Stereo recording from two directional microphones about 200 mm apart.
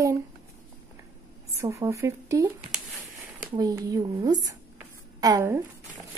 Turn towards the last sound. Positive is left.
turn(degrees=-15)  # may be behind; listen again after turning